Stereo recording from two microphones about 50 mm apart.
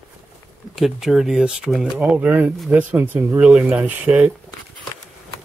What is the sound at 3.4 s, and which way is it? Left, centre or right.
Speech, right.